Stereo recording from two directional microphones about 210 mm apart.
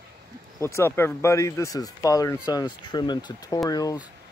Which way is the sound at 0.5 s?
15° left (ahead or behind).